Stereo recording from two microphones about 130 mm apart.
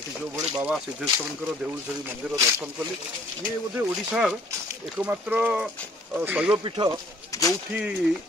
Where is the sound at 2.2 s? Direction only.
10° right (ahead or behind).